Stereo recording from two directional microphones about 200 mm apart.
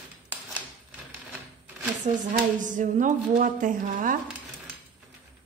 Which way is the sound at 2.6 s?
40° right (ahead or behind).